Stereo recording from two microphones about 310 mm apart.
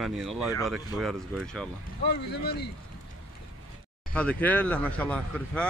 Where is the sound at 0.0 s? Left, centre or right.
Centre.